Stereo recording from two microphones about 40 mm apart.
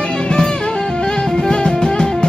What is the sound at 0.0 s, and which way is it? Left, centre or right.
Music, left.